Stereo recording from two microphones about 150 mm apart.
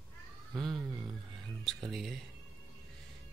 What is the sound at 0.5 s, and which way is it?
Speech, centre (ahead or behind).